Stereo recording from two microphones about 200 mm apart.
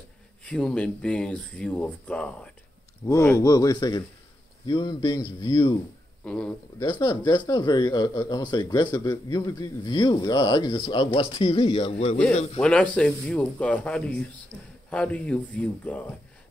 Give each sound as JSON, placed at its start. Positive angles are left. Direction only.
{"t": 0.5, "sound": "speech", "side_deg": 5}
{"t": 6.2, "sound": "speech", "side_deg": 5}
{"t": 6.8, "sound": "speech", "side_deg": 20}
{"t": 12.5, "sound": "speech", "side_deg": 5}